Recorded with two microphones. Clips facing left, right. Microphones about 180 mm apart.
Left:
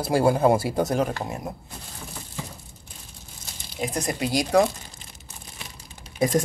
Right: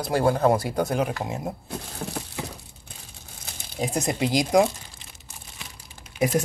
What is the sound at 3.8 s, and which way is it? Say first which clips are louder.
Speech: right 2 dB; 25° right (ahead or behind).